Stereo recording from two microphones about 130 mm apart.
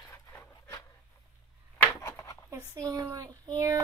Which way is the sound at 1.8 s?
20° left (ahead or behind).